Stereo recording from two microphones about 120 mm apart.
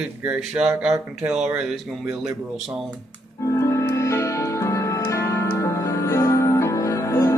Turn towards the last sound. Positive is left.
turn(degrees=25)  # may be behind; listen again after turning